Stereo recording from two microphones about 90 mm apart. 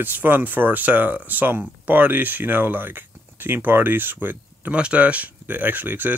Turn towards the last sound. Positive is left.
turn(degrees=-20)  # may be behind; listen again after turning